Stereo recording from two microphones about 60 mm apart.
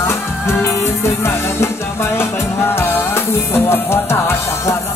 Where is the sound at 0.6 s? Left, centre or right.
Left.